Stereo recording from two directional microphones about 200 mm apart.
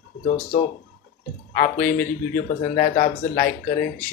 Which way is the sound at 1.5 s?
45° left (ahead or behind).